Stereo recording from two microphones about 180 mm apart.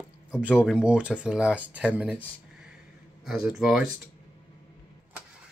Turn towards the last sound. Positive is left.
turn(degrees=0)  # may be behind; listen again after turning